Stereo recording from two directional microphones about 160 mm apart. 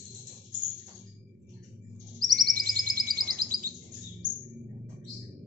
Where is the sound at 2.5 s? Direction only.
65° right (ahead or behind).